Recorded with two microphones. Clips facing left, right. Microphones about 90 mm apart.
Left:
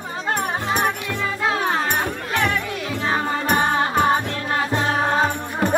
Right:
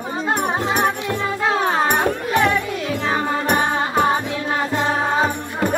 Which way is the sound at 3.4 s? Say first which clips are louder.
Left 2 dB; 10° right (ahead or behind).